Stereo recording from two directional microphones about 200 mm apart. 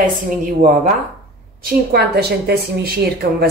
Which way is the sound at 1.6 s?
50° right (ahead or behind).